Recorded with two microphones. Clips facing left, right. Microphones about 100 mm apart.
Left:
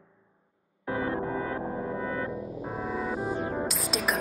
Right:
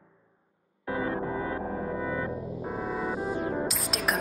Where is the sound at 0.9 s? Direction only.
20° right (ahead or behind).